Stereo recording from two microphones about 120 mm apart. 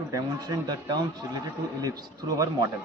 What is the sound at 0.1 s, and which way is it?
A man's voice, 30° right (ahead or behind).